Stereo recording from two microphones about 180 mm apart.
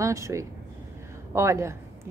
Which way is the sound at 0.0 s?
15° right (ahead or behind).